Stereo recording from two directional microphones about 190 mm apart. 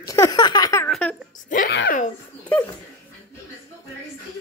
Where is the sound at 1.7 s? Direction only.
65° left (ahead or behind).